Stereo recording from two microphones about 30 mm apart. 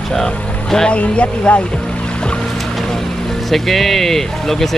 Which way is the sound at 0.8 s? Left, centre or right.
Left.